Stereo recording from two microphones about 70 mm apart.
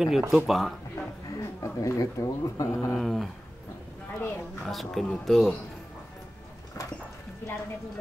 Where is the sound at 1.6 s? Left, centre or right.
Left.